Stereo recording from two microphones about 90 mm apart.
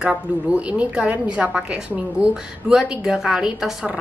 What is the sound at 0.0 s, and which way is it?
A woman's voice, 10° right (ahead or behind).